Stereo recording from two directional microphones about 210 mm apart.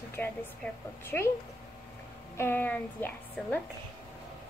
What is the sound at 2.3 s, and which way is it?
A woman's voice, 10° left (ahead or behind).